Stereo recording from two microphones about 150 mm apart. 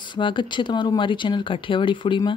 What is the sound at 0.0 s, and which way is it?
Speech, 30° left (ahead or behind).